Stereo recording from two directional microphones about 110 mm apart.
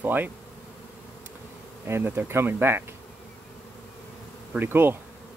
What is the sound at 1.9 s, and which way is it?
Speech, 20° right (ahead or behind).